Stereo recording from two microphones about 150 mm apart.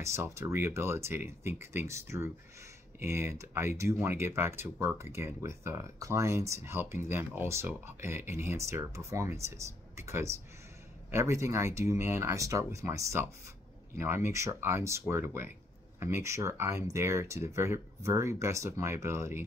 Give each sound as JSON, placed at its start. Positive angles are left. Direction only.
{"t": 0.0, "sound": "speech", "side_deg": -20}